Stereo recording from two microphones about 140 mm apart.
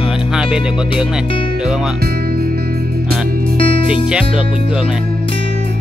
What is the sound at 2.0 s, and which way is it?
Music, 90° right.